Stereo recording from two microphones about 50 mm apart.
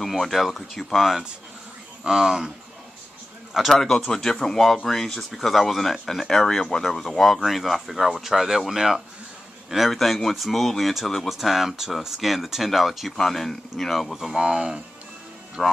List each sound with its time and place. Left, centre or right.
0.0 s speech: centre
3.7 s speech: centre
14.1 s speech: centre
15.6 s speech: centre